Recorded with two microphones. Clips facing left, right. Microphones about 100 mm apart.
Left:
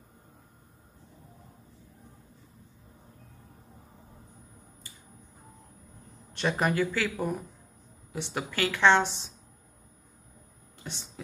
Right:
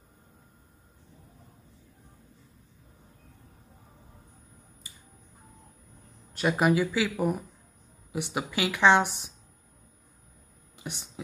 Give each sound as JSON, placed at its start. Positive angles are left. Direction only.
{"t": 6.3, "sound": "a woman's voice", "side_deg": -10}
{"t": 10.8, "sound": "a woman's voice", "side_deg": -15}